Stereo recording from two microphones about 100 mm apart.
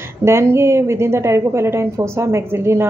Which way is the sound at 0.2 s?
25° right (ahead or behind).